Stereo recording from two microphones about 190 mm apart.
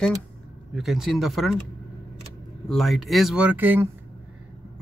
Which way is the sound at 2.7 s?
Centre (ahead or behind).